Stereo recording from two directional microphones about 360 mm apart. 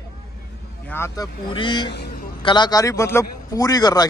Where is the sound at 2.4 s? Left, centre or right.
Centre.